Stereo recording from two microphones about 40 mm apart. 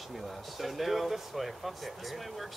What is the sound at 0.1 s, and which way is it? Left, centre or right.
Speech, centre.